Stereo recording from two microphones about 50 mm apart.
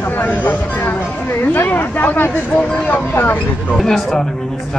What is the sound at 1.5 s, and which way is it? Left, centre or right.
Speech, left.